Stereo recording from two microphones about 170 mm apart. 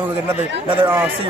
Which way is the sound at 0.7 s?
30° right (ahead or behind).